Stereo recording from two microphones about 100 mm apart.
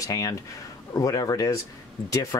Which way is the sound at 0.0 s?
35° left (ahead or behind).